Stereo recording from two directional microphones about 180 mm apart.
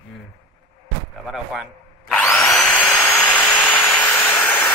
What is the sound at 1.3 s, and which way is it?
Zipper, centre (ahead or behind).